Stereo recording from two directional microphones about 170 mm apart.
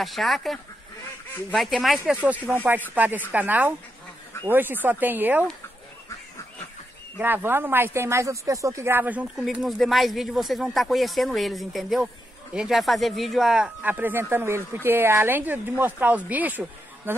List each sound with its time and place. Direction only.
0.0 s speech: centre (ahead or behind)
7.2 s speech: 10° right (ahead or behind)